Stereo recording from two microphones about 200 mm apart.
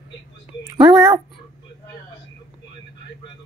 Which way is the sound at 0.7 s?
20° right (ahead or behind).